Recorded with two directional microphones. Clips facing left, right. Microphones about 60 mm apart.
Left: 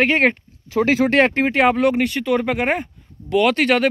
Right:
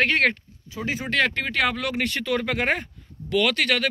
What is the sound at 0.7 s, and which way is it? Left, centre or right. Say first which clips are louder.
Speech: left 13 dB; left.